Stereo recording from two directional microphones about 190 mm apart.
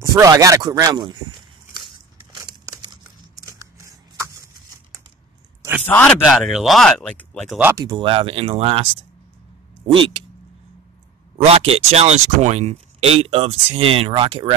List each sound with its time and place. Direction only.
0.1 s speech: 20° right (ahead or behind)
2.3 s a sound: 20° right (ahead or behind)
5.6 s a sound: 10° right (ahead or behind)
5.9 s speech: 10° left (ahead or behind)
6.2 s speech: centre (ahead or behind)
7.5 s speech: 15° right (ahead or behind); by 8.8 s 30° right (ahead or behind)
11.3 s speech: 30° right (ahead or behind)